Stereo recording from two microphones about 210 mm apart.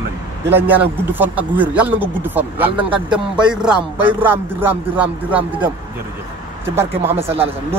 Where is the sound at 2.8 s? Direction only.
25° right (ahead or behind).